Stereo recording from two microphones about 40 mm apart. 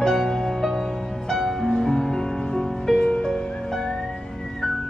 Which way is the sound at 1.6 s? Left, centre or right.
Centre.